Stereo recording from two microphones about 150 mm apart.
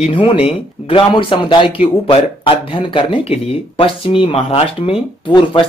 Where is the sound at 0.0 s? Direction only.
35° left (ahead or behind).